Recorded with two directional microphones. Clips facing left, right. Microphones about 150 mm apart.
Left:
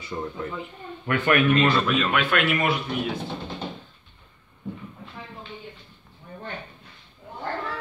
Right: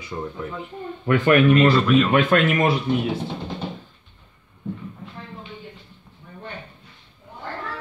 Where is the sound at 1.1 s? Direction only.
40° right (ahead or behind).